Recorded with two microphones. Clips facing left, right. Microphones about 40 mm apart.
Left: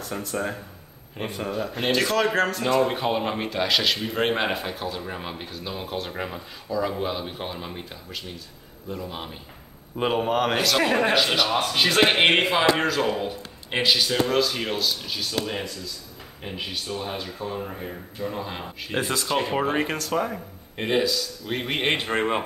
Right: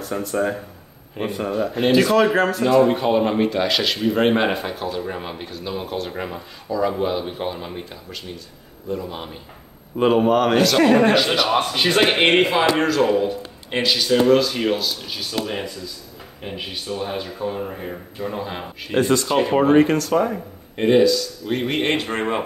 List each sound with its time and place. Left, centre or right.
0.0 s speech: centre
21.9 s speech: centre